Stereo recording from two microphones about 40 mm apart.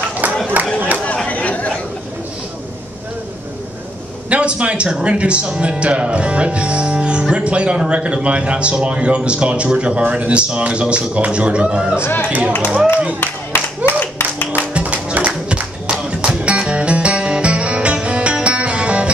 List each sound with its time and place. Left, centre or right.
0.7 s chatter: right
1.0 s chatter: left
4.3 s a man's voice: right
12.0 s speech: left
12.3 s speech: right
13.2 s music: left
14.7 s music: right